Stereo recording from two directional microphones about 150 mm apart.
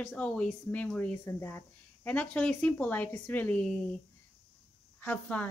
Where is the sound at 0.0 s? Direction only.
10° left (ahead or behind).